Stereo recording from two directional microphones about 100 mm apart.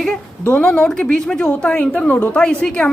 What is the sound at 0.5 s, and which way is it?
A woman's voice, 15° left (ahead or behind).